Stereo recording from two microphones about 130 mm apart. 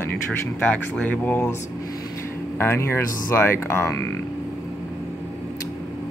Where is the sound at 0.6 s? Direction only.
10° left (ahead or behind).